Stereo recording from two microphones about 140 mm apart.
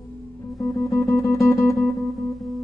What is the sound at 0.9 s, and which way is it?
Music, 25° left (ahead or behind).